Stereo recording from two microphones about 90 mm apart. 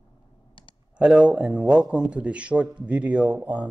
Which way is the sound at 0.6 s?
70° left (ahead or behind).